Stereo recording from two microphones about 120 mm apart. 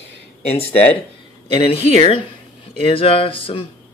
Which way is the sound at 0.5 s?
55° left (ahead or behind).